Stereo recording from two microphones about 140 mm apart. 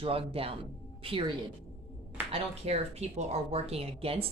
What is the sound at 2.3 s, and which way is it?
Speech, 45° right (ahead or behind).